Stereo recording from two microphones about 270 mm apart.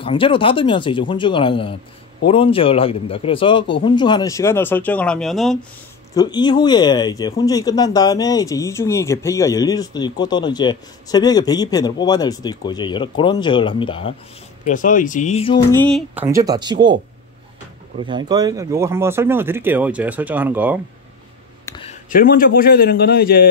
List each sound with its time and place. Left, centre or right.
0.0 s speech: centre
6.1 s speech: centre
15.7 s speech: centre
16.2 s speech: centre
17.9 s speech: centre
21.6 s a sound: centre
22.1 s a man's voice: left